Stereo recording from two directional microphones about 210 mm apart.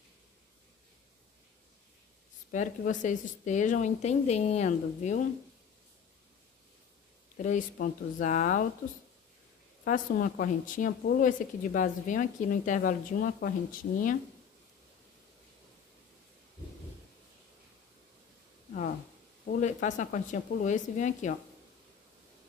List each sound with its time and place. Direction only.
2.5 s speech: 35° left (ahead or behind)
7.4 s speech: 40° left (ahead or behind)
9.8 s speech: 40° left (ahead or behind)
19.4 s speech: 35° left (ahead or behind)